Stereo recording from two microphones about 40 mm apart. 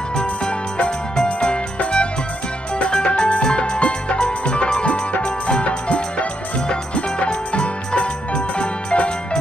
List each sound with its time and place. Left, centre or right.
0.1 s music: left
2.9 s music: left
4.8 s music: left